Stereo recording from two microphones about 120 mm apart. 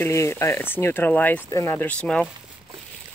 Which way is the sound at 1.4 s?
25° left (ahead or behind).